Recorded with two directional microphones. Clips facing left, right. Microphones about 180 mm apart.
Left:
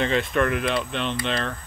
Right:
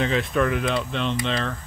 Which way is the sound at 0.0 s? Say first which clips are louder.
Even; centre (ahead or behind).